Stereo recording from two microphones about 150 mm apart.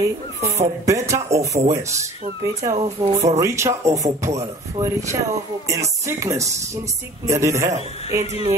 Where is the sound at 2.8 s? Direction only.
45° right (ahead or behind).